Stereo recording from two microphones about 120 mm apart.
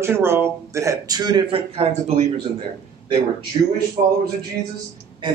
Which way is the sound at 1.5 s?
55° right (ahead or behind).